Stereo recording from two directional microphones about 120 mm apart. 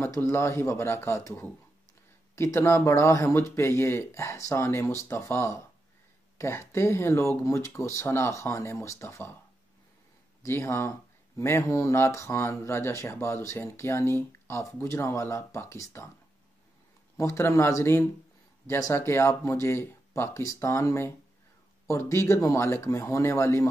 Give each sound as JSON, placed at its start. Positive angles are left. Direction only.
{"t": 0.0, "sound": "speech", "side_deg": 20}
{"t": 10.4, "sound": "speech", "side_deg": 20}
{"t": 17.2, "sound": "speech", "side_deg": 25}